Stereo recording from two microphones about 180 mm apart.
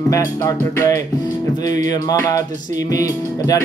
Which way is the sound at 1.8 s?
20° left (ahead or behind).